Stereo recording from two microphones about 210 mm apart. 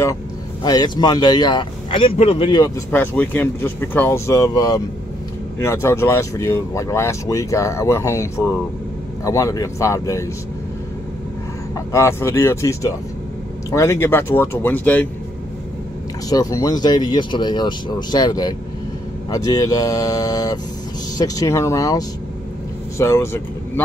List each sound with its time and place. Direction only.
0.7 s speech: 20° left (ahead or behind)
2.9 s speech: 10° left (ahead or behind)
11.7 s speech: 15° left (ahead or behind)
16.3 s speech: 15° left (ahead or behind)